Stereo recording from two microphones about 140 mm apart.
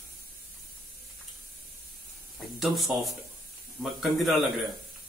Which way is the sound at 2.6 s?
Centre (ahead or behind).